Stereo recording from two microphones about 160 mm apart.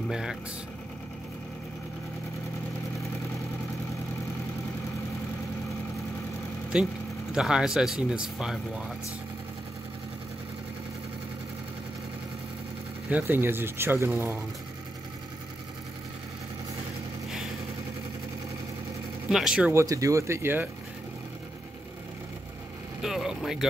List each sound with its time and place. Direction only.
0.1 s speech: 5° right (ahead or behind)
6.7 s speech: centre (ahead or behind)
13.1 s speech: 15° right (ahead or behind)
19.3 s speech: 5° right (ahead or behind)
19.7 s speech: 20° right (ahead or behind)
23.0 s vehicle: centre (ahead or behind)